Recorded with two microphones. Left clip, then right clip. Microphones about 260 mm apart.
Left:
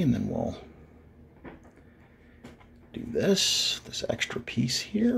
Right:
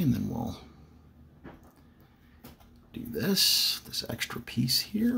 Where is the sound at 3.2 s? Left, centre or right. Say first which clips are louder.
Left 1 dB; right.